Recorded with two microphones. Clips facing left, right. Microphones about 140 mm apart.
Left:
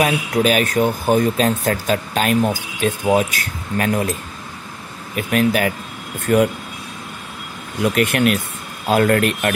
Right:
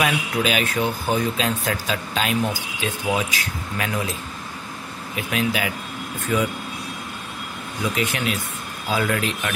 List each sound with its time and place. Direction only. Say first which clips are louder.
0.0 s speech: left 5 dB; 40° left (ahead or behind); by 6.5 s 60° left (ahead or behind)
7.8 s speech: left 8 dB; 60° left (ahead or behind)